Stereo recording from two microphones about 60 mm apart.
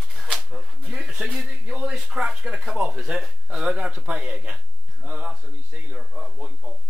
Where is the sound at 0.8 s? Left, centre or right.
Centre.